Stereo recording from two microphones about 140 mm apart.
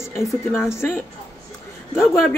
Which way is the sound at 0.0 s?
20° left (ahead or behind).